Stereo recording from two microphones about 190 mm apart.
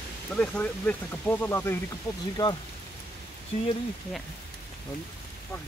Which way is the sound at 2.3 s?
25° left (ahead or behind).